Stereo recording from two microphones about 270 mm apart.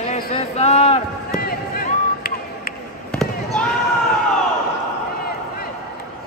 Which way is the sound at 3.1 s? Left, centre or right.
Centre.